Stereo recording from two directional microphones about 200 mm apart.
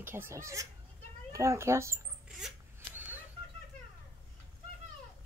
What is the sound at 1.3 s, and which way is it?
Speech, 15° right (ahead or behind).